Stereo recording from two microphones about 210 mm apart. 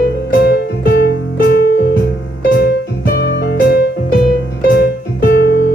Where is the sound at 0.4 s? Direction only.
50° left (ahead or behind).